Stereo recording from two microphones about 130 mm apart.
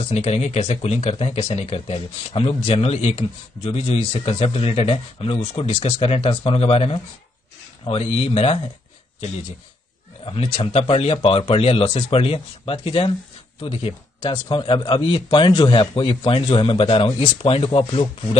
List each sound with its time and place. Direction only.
0.0 s speech: 55° left (ahead or behind)
10.2 s speech: 45° left (ahead or behind)
14.2 s a man's voice: 35° left (ahead or behind)